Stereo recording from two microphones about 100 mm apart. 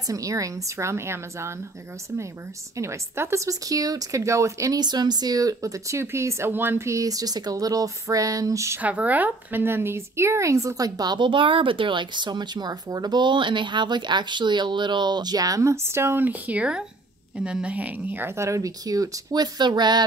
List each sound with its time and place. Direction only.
0.1 s a woman's voice: 35° right (ahead or behind)
2.8 s speech: 25° right (ahead or behind)
4.7 s speech: 45° right (ahead or behind)
8.8 s a woman's voice: 15° right (ahead or behind); by 20.1 s 45° right (ahead or behind)